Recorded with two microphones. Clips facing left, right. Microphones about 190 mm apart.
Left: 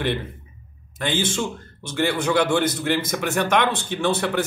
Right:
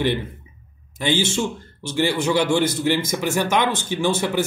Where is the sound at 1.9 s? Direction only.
55° left (ahead or behind).